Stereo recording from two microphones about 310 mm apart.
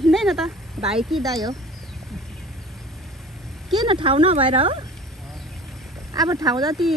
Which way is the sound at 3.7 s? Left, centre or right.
Centre.